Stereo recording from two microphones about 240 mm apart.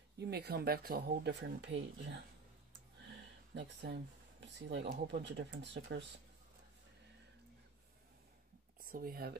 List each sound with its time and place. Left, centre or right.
0.2 s speech: right
3.5 s speech: right
8.8 s speech: right